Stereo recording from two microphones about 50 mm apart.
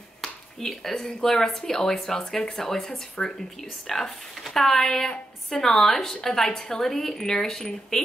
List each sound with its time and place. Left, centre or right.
0.2 s a woman's voice: centre